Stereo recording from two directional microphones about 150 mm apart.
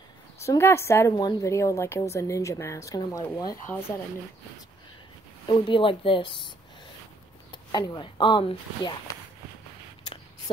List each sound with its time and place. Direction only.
0.4 s a woman's voice: 20° left (ahead or behind)
5.5 s speech: 35° left (ahead or behind)
7.5 s speech: 30° left (ahead or behind)